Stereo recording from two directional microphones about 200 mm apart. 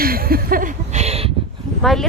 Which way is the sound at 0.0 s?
50° right (ahead or behind).